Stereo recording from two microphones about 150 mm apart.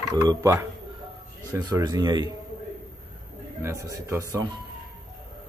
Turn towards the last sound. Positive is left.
turn(degrees=-20)  # may be behind; listen again after turning